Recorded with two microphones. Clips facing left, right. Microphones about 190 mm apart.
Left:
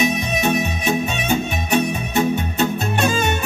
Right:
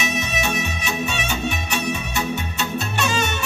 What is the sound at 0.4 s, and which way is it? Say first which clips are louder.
Music: left 5 dB; 50° left (ahead or behind).